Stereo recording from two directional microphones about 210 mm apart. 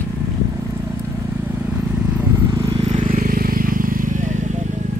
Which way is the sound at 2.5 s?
25° right (ahead or behind).